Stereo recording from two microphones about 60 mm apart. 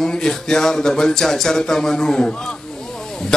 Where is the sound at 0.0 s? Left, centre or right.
Centre.